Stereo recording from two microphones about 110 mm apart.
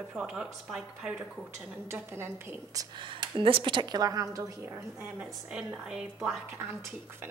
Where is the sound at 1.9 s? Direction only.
20° right (ahead or behind).